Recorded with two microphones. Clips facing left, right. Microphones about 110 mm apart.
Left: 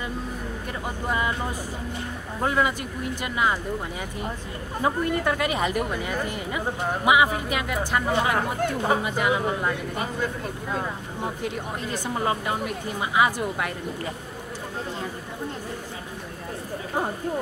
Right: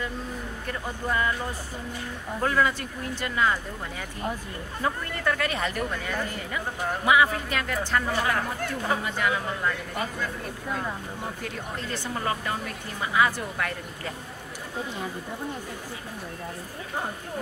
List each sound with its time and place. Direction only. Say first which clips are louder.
1.0 s speech: even; 15° left (ahead or behind)
2.4 s speech: left 1 dB; 15° left (ahead or behind)
4.8 s speech: left 4 dB; 20° left (ahead or behind)
11.4 s speech: left 4 dB; 15° left (ahead or behind)